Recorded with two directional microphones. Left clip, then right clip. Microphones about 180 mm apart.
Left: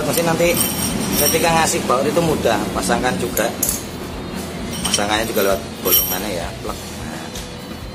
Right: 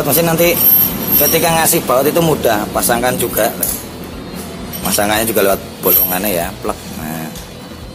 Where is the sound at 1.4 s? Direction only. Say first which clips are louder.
Right 3 dB; 40° right (ahead or behind).